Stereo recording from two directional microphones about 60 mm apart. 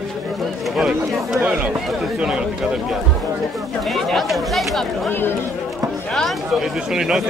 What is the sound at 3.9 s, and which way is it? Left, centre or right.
Speech, centre.